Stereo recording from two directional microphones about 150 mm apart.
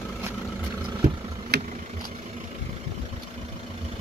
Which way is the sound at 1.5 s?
90° right.